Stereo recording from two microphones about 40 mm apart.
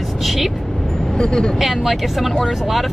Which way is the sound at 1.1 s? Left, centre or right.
Left.